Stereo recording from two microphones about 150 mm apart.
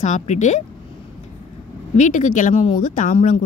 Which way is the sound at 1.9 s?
55° left (ahead or behind).